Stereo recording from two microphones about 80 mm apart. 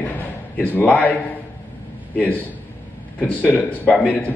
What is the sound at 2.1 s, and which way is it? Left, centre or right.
A man's voice, left.